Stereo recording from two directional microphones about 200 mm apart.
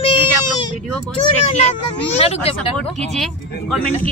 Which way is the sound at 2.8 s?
5° left (ahead or behind).